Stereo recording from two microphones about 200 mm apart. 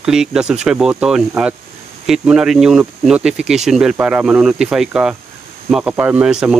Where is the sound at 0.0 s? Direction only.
5° right (ahead or behind).